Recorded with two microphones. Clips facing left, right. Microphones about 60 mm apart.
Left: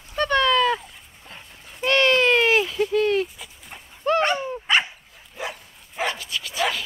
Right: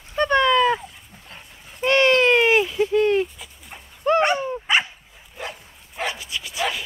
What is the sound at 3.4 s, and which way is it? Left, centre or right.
Dog, centre.